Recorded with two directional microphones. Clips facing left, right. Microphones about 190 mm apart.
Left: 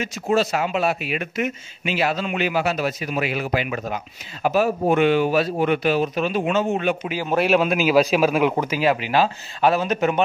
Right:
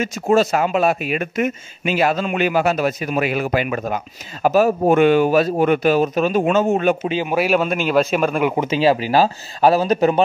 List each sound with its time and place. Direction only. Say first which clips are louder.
0.0 s speech: right 4 dB; 45° right (ahead or behind)
7.0 s speech: right 5 dB; 25° right (ahead or behind)
7.2 s a man's voice: left 1 dB; 5° right (ahead or behind)
8.5 s speech: right 4 dB; 25° right (ahead or behind)